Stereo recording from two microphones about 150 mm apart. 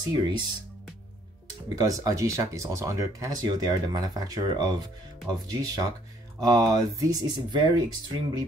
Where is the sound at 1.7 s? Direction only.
25° right (ahead or behind).